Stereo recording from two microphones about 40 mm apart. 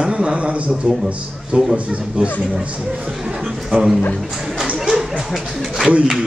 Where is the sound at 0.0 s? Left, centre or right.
Right.